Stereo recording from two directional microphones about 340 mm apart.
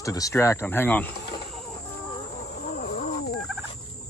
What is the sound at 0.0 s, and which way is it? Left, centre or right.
Fowl, centre.